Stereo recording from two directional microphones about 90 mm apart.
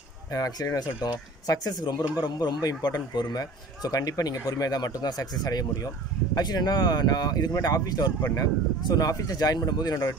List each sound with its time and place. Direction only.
0.3 s speech: 40° left (ahead or behind)